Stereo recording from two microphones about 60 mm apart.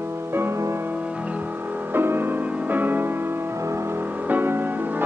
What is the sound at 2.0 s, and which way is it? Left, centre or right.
Music, right.